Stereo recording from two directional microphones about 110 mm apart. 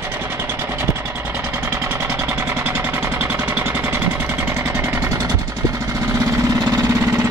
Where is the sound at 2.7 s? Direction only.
20° right (ahead or behind).